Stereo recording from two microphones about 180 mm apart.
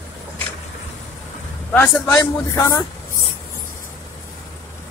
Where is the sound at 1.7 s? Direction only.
10° left (ahead or behind).